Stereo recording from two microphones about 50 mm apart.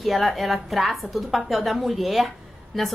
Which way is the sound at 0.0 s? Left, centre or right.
Centre.